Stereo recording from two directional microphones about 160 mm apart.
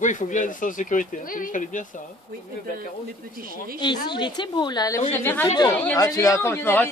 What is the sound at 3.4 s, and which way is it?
Speech, 65° right (ahead or behind).